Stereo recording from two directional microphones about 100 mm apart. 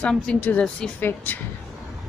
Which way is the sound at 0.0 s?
10° left (ahead or behind).